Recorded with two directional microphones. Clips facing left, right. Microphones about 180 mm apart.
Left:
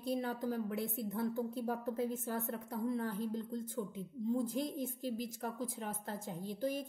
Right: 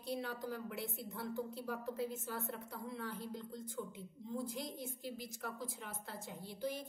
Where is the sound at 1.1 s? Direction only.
55° left (ahead or behind).